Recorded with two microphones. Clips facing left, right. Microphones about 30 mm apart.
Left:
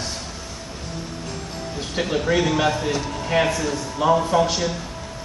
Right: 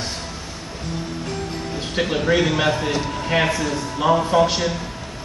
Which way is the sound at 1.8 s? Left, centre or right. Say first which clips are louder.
Right 1 dB; centre.